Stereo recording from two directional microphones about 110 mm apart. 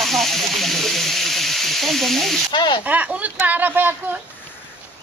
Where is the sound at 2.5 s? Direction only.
45° left (ahead or behind).